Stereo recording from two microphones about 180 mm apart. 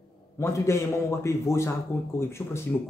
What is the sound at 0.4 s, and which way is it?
Speech, 15° left (ahead or behind).